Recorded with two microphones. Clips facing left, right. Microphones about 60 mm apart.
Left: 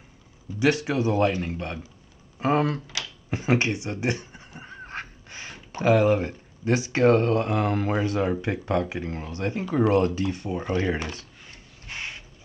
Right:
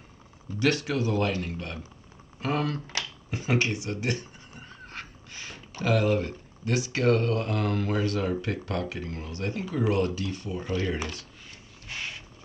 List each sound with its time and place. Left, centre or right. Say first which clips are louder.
0.6 s speech: left 3 dB; centre
3.3 s a sound: left 4 dB; left
5.8 s speech: left 5 dB; left